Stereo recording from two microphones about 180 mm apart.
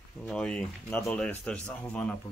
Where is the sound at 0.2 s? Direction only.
5° left (ahead or behind).